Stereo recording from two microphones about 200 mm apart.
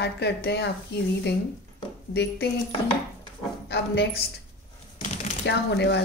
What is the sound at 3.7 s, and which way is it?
Speech, 55° left (ahead or behind).